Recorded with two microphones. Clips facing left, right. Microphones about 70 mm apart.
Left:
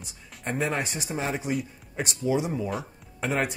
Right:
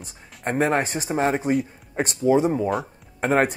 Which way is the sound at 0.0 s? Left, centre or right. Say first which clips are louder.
Right 6 dB; right.